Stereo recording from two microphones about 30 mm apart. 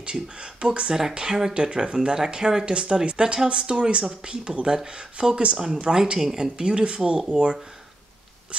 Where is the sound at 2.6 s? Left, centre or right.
Right.